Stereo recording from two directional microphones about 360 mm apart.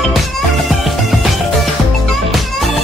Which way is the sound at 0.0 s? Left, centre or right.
Centre.